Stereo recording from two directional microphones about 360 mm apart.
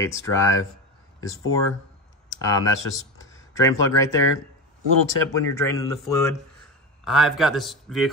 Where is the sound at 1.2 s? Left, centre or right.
Left.